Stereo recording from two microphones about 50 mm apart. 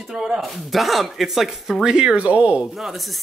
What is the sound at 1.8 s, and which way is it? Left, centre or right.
Speech, centre.